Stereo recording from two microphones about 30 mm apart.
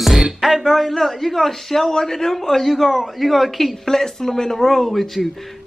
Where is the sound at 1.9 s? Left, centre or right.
Centre.